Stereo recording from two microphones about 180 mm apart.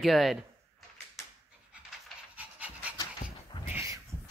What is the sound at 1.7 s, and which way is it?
Pant, 5° right (ahead or behind).